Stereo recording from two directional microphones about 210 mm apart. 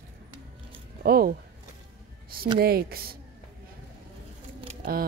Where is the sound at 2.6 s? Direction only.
45° right (ahead or behind).